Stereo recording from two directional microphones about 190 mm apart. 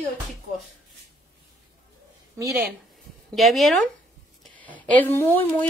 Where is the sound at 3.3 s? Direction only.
Centre (ahead or behind).